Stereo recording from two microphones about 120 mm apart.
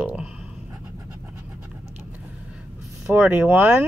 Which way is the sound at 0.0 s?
10° right (ahead or behind).